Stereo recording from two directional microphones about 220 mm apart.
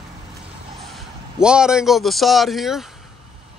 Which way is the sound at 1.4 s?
5° right (ahead or behind).